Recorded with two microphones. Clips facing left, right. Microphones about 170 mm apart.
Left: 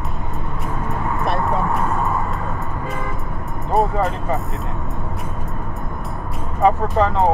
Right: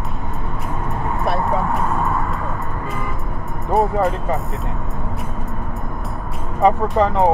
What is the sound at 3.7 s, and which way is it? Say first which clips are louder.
Speech: right 1 dB; centre (ahead or behind).